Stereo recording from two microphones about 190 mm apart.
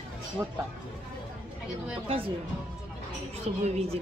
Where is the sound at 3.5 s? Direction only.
35° right (ahead or behind).